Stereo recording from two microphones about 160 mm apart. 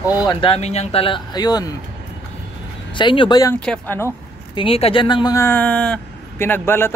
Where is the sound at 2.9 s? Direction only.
30° left (ahead or behind).